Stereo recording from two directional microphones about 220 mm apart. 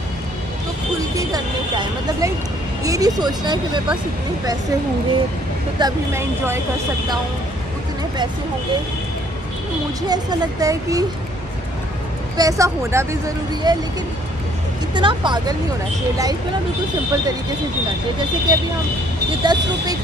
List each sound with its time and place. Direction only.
1.1 s a sound: 15° right (ahead or behind)
2.8 s speech: 15° right (ahead or behind)
5.8 s speech: 15° right (ahead or behind)
10.0 s speech: 15° right (ahead or behind)
12.4 s speech: 15° right (ahead or behind)
15.0 s speech: 20° right (ahead or behind)
18.5 s speech: 20° right (ahead or behind)